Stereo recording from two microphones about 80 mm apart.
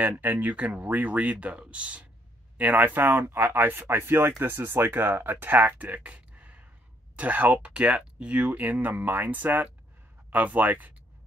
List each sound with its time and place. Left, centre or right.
0.2 s speech: right